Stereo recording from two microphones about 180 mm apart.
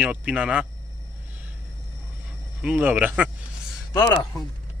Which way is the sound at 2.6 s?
10° right (ahead or behind).